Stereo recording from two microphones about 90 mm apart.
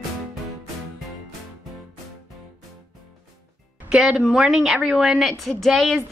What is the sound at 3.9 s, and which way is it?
A woman's voice, 10° right (ahead or behind).